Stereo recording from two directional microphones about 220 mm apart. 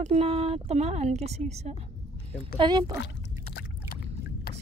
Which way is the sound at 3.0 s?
45° left (ahead or behind).